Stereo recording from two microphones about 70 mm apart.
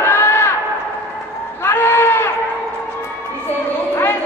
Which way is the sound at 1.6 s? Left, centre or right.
Left.